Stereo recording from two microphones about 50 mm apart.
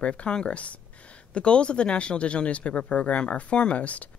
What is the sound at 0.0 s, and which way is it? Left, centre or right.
Speech, left.